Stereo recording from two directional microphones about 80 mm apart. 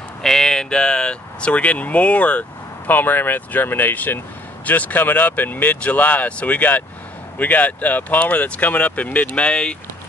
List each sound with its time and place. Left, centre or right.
0.2 s speech: centre